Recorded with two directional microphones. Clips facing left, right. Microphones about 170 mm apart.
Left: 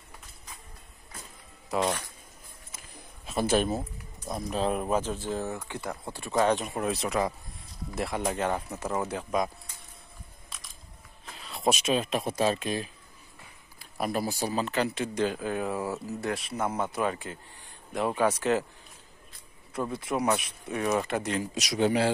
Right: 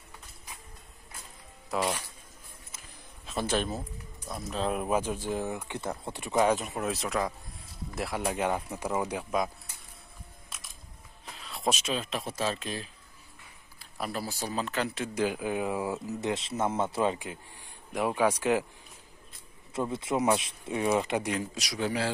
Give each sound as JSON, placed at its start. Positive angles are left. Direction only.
{"t": 1.7, "sound": "speech", "side_deg": 0}
{"t": 3.3, "sound": "speech", "side_deg": 10}
{"t": 4.6, "sound": "speech", "side_deg": -5}
{"t": 6.5, "sound": "speech", "side_deg": 0}
{"t": 10.5, "sound": "camera", "side_deg": -5}
{"t": 11.2, "sound": "a sound", "side_deg": 0}
{"t": 11.7, "sound": "speech", "side_deg": 15}
{"t": 15.2, "sound": "speech", "side_deg": -15}
{"t": 17.9, "sound": "speech", "side_deg": -10}
{"t": 19.7, "sound": "speech", "side_deg": -25}
{"t": 20.9, "sound": "speech", "side_deg": -15}
{"t": 21.5, "sound": "speech", "side_deg": 20}